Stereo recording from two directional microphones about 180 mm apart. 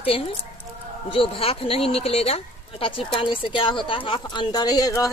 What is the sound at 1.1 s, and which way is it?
A woman's voice, 30° left (ahead or behind).